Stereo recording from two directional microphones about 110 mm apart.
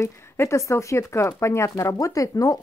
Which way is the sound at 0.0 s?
25° left (ahead or behind).